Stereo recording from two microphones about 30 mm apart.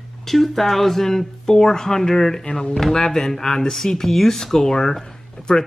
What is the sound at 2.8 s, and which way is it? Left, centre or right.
Speech, centre.